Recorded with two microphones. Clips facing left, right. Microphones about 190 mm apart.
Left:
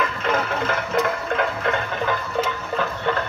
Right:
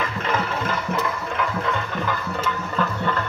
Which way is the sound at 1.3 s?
60° left (ahead or behind).